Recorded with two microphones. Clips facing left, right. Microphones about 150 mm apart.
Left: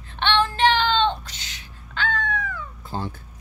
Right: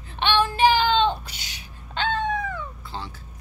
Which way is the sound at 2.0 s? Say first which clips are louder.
Right 2 dB; 25° right (ahead or behind).